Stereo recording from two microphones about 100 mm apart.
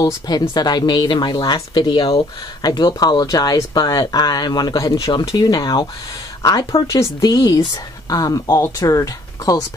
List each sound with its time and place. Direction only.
0.0 s speech: 45° left (ahead or behind)
5.3 s speech: 45° left (ahead or behind)